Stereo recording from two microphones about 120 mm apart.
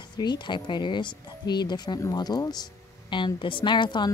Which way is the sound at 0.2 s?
40° left (ahead or behind).